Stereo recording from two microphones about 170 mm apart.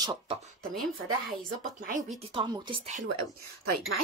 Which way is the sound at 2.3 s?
30° right (ahead or behind).